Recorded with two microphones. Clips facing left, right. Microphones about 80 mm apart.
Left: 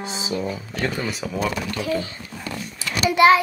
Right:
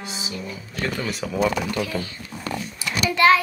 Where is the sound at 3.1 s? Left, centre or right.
Centre.